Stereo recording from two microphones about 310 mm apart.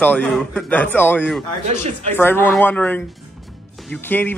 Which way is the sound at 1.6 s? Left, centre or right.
Right.